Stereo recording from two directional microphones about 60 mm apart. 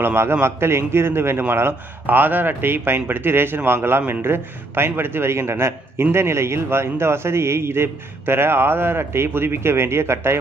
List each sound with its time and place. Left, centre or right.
0.0 s a man's voice: right